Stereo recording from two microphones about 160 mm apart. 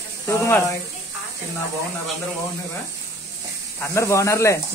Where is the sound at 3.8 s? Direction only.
15° left (ahead or behind).